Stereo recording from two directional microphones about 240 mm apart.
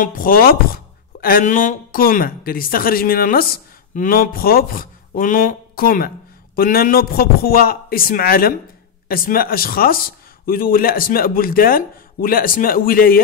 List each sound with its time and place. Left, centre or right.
0.0 s speech: left